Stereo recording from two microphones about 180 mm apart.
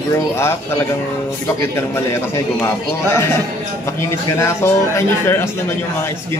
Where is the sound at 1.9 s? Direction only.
15° left (ahead or behind).